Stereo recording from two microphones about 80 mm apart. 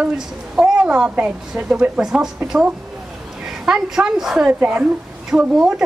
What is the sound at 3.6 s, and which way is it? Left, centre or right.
A woman's voice, centre.